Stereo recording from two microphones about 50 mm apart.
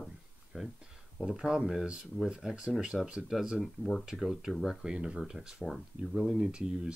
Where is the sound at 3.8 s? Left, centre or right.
Centre.